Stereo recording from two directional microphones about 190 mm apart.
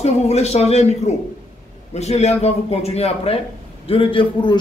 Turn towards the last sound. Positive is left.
turn(degrees=25)  # may be behind; listen again after turning